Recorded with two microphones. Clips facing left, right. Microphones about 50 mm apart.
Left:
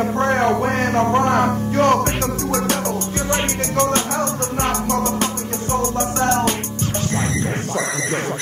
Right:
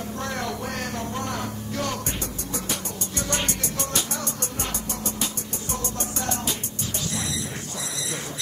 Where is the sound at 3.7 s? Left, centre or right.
Left.